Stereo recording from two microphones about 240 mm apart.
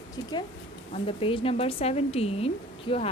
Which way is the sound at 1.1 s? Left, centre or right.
Left.